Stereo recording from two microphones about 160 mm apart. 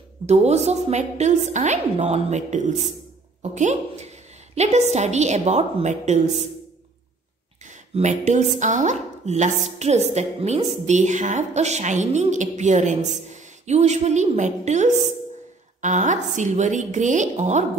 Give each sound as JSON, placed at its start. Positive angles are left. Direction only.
{"t": 0.3, "sound": "speech", "side_deg": -45}
{"t": 7.6, "sound": "speech", "side_deg": -50}